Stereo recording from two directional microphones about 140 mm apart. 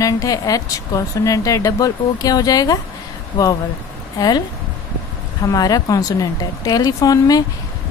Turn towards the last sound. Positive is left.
turn(degrees=25)  # may be behind; listen again after turning